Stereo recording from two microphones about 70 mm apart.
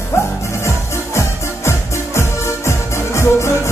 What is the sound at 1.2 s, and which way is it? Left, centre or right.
Music, left.